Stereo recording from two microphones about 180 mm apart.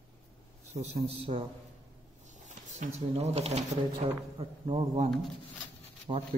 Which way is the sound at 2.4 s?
40° right (ahead or behind).